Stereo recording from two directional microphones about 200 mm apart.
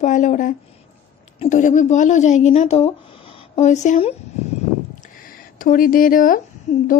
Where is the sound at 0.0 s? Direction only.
40° left (ahead or behind).